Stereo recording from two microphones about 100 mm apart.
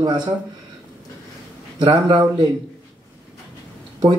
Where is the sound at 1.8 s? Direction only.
55° right (ahead or behind).